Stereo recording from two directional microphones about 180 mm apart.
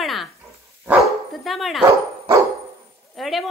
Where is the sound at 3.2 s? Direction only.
Centre (ahead or behind).